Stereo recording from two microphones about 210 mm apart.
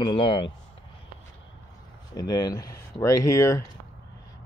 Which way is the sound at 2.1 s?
20° left (ahead or behind).